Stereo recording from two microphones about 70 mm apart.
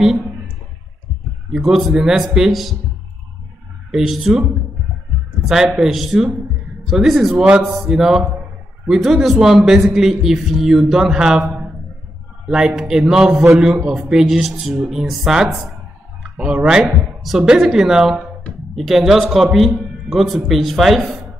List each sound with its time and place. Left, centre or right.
0.0 s speech: centre
1.5 s a man's voice: centre
3.9 s a man's voice: centre
7.4 s speech: centre
7.7 s a man's voice: centre